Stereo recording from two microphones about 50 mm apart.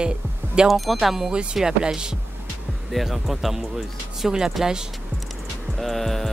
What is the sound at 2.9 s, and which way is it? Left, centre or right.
Speech, centre.